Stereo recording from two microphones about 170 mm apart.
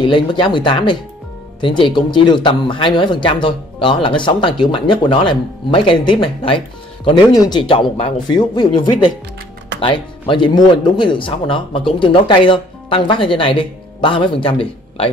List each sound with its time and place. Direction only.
0.0 s speech: 30° left (ahead or behind)